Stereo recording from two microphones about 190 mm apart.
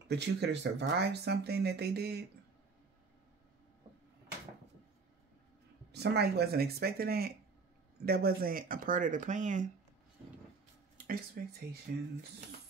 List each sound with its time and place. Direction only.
0.1 s speech: 65° right (ahead or behind)
5.9 s speech: 60° right (ahead or behind); by 9.7 s 40° right (ahead or behind)
11.4 s speech: 55° right (ahead or behind)